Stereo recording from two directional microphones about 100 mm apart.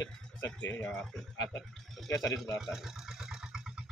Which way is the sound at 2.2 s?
35° left (ahead or behind).